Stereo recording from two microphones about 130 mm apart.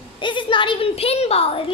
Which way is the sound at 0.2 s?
40° left (ahead or behind).